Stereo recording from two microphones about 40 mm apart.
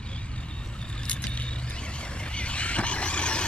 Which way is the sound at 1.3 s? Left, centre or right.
Left.